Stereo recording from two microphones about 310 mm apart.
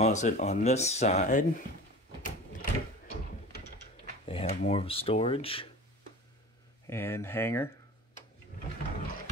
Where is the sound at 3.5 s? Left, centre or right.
Left.